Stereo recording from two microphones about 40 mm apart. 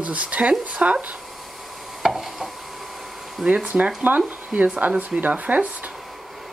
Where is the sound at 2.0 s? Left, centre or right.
Centre.